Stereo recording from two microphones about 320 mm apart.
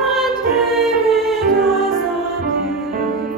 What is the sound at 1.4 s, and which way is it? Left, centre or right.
Music, right.